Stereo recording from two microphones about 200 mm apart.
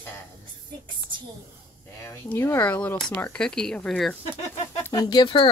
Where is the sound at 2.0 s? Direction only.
10° left (ahead or behind).